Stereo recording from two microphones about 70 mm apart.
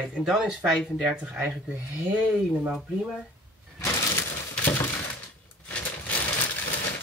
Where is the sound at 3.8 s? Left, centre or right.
Left.